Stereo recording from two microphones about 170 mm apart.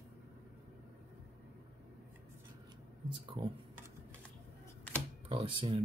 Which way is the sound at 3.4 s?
30° right (ahead or behind).